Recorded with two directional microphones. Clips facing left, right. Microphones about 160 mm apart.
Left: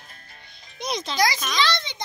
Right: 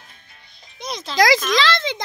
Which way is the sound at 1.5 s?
90° right.